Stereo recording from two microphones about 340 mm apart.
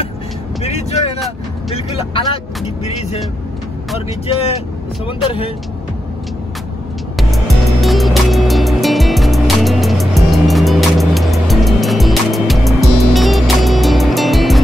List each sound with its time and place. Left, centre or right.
0.7 s speech: centre
5.0 s speech: centre
7.2 s music: centre